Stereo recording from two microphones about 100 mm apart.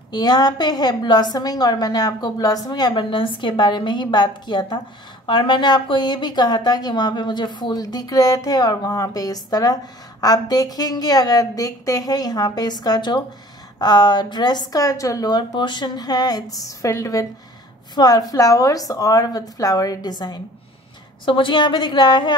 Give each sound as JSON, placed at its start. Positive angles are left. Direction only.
{"t": 0.1, "sound": "a woman's voice", "side_deg": 40}
{"t": 21.3, "sound": "a woman's voice", "side_deg": 55}